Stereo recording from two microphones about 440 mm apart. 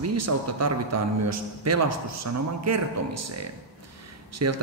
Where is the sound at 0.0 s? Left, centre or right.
Right.